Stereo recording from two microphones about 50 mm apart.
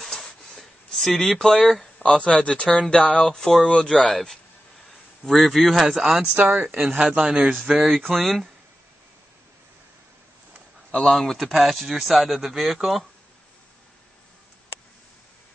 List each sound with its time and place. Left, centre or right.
0.0 s a sound: centre
2.0 s speech: centre
3.3 s speech: centre
6.2 s a man's voice: right
7.7 s speech: centre
10.9 s speech: left
11.1 s speech: centre